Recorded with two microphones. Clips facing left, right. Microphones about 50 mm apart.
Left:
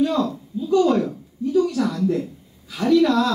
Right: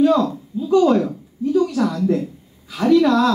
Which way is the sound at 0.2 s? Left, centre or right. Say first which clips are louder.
Right 2 dB; centre.